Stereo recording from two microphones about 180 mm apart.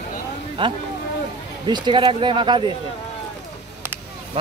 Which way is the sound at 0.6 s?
30° right (ahead or behind).